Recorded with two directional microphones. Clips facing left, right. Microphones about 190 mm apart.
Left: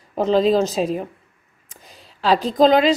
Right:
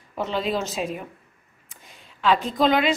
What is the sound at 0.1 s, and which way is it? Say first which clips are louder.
A woman's voice: left 9 dB; 35° left (ahead or behind).